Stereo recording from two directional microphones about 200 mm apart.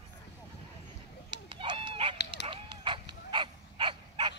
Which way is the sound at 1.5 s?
25° right (ahead or behind).